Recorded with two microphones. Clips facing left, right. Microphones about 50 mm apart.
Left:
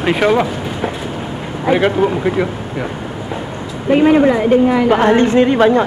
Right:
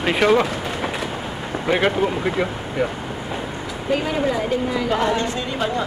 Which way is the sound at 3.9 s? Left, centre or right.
Left.